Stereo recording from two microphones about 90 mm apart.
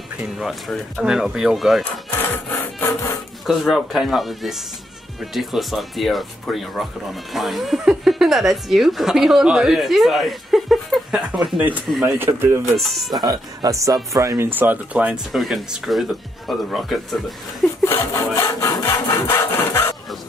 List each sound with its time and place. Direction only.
0.4 s speech: centre (ahead or behind)
3.4 s a woman's voice: centre (ahead or behind)
11.1 s speech: 15° right (ahead or behind)
12.1 s speech: 25° right (ahead or behind)
12.7 s speech: centre (ahead or behind)
13.2 s speech: 45° right (ahead or behind)
14.5 s speech: 20° right (ahead or behind)
15.3 s speech: 5° right (ahead or behind)
17.8 s sawing: 30° left (ahead or behind)